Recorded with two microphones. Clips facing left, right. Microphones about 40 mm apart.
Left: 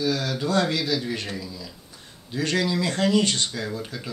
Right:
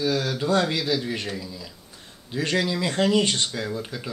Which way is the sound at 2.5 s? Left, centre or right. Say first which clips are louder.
Even; centre.